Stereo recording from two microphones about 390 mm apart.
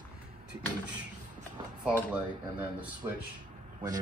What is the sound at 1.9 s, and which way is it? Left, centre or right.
Speech, centre.